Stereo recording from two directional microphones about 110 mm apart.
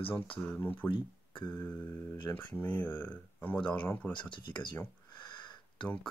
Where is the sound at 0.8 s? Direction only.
50° left (ahead or behind).